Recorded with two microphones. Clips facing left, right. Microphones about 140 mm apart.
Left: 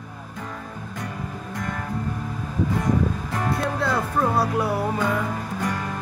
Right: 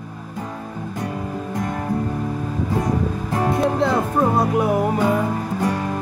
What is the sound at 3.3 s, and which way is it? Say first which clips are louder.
Music: right 6 dB; 30° right (ahead or behind).